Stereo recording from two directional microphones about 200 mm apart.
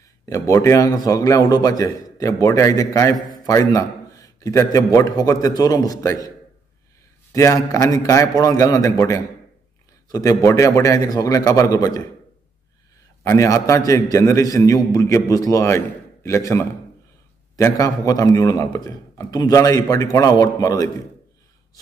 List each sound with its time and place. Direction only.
0.3 s a man's voice: 15° left (ahead or behind)
7.3 s a man's voice: 15° left (ahead or behind)
13.2 s a man's voice: 15° left (ahead or behind)